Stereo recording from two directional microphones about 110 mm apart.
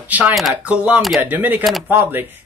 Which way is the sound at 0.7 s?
10° right (ahead or behind).